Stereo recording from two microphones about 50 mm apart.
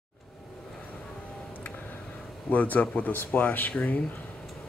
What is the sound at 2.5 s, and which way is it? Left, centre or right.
Speech, left.